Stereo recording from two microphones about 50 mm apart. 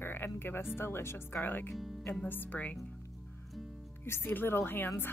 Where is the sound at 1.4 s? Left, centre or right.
Left.